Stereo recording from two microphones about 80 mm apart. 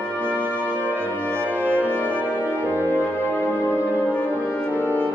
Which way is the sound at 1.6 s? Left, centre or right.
Right.